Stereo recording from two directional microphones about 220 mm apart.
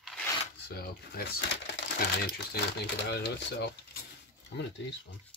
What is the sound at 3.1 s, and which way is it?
Speech, 50° left (ahead or behind).